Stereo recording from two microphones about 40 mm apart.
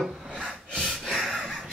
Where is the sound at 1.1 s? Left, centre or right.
Centre.